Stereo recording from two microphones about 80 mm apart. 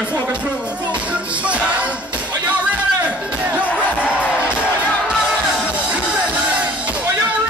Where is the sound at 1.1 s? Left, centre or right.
Centre.